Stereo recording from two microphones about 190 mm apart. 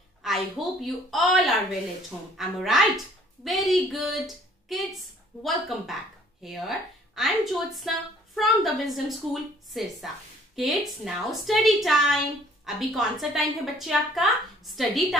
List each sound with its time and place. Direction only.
0.2 s a woman's voice: centre (ahead or behind)